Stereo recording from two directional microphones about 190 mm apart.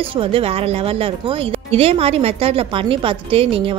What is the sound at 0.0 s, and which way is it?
Speech, 30° right (ahead or behind).